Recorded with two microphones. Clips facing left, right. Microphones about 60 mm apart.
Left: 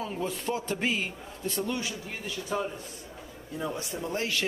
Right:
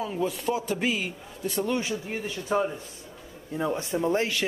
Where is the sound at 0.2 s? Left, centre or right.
Centre.